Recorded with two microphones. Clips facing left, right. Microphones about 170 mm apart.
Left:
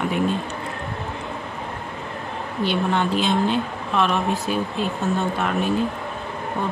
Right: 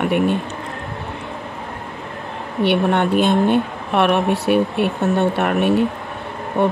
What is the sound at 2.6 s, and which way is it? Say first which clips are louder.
Speech: right 5 dB; 65° right (ahead or behind).